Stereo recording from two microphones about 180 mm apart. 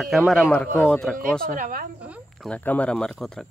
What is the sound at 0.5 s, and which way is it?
Speech, 10° left (ahead or behind).